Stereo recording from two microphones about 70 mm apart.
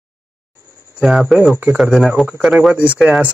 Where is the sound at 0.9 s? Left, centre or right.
Centre.